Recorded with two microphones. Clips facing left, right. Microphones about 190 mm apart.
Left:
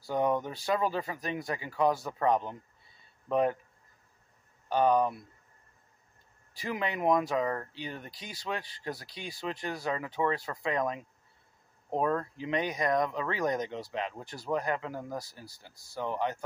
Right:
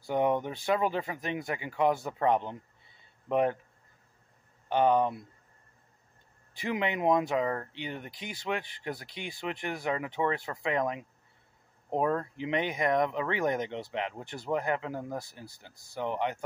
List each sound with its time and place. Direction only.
0.0 s speech: 20° right (ahead or behind)
4.6 s speech: 20° right (ahead or behind)
6.5 s speech: 20° right (ahead or behind)